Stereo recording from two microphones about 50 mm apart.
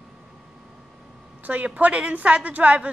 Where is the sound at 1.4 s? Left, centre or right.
Right.